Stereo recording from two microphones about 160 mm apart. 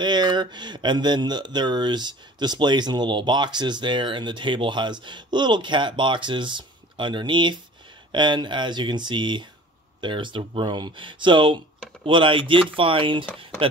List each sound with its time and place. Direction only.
0.0 s speech: 25° right (ahead or behind)